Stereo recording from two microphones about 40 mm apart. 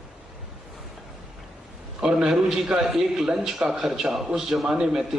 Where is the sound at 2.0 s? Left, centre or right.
Centre.